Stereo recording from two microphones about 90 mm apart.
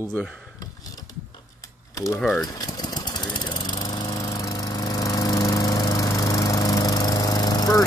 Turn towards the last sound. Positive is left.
turn(degrees=45)  # may be behind; listen again after turning